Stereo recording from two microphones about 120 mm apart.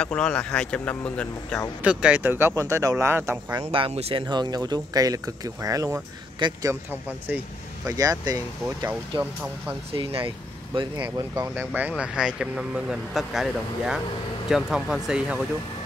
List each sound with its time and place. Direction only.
0.0 s speech: 5° left (ahead or behind)
1.8 s speech: 10° right (ahead or behind)
2.2 s speech: 20° right (ahead or behind)
3.5 s speech: 45° right (ahead or behind)
4.3 s speech: 35° right (ahead or behind)
6.4 s speech: 40° right (ahead or behind)
7.8 s speech: 30° right (ahead or behind)
9.2 s speech: 10° right (ahead or behind)
9.9 s speech: 45° right (ahead or behind); by 11.6 s 25° right (ahead or behind)
12.0 s speech: 5° right (ahead or behind)